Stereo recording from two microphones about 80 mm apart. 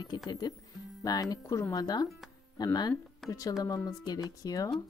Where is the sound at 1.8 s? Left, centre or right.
Left.